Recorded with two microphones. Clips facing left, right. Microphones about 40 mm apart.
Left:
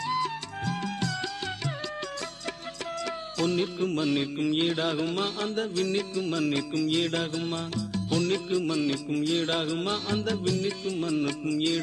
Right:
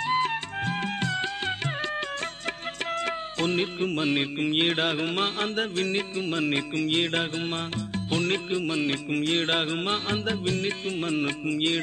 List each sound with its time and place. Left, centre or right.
0.0 s music: right
2.9 s music: right